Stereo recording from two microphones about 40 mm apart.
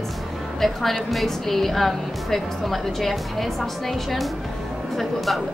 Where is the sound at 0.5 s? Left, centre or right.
Centre.